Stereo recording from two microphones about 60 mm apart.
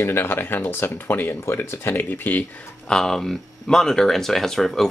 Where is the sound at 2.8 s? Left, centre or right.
Centre.